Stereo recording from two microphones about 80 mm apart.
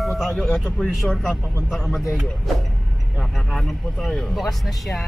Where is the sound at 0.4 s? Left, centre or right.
Centre.